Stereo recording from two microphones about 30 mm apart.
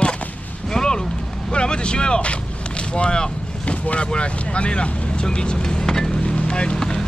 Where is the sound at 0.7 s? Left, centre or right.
Left.